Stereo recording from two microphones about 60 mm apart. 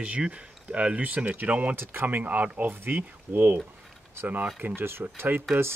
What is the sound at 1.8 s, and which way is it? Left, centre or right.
Speech, right.